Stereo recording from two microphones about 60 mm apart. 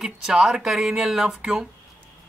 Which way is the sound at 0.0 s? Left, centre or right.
Centre.